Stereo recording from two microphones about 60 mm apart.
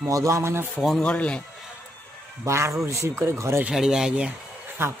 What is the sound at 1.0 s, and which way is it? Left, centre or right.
Speech, centre.